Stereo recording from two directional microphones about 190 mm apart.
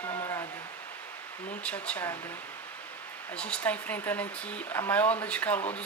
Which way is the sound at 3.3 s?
5° left (ahead or behind).